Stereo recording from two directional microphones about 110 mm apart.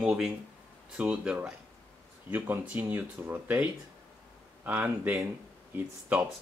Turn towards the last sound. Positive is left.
turn(degrees=-15)  # may be behind; listen again after turning